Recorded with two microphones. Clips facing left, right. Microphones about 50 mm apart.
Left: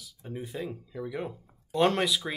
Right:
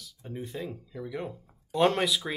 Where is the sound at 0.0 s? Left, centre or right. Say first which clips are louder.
Even; centre.